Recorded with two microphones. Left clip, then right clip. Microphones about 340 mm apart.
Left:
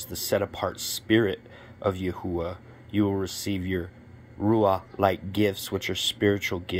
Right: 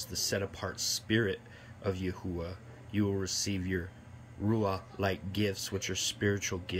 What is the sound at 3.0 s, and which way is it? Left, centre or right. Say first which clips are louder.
Speech: left 7 dB; left.